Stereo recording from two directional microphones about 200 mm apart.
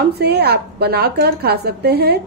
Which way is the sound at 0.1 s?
55° right (ahead or behind).